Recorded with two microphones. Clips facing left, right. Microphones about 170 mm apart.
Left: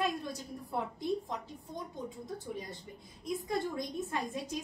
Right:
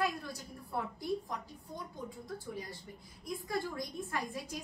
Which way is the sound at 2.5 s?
20° left (ahead or behind).